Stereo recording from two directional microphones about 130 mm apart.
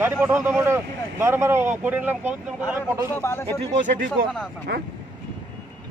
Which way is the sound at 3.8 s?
80° right.